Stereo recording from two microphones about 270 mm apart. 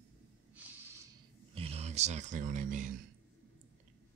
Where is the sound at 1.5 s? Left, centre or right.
Right.